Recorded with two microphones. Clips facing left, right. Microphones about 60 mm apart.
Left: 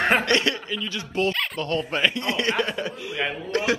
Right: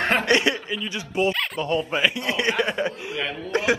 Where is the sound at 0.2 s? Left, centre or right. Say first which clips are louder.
Right 2 dB; centre.